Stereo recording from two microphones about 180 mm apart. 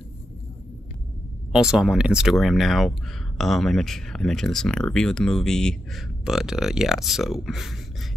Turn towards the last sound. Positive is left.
turn(degrees=0)  # may be behind; listen again after turning